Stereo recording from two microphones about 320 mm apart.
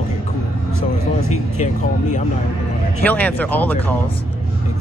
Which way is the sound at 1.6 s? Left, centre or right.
Left.